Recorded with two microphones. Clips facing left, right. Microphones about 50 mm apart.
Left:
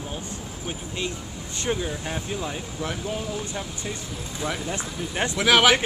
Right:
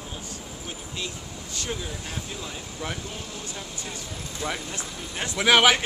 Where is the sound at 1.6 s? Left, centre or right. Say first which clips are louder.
Left 7 dB; left.